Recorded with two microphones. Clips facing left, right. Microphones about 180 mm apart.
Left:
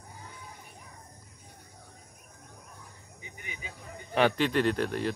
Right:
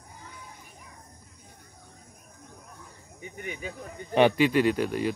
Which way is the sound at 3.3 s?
55° right (ahead or behind).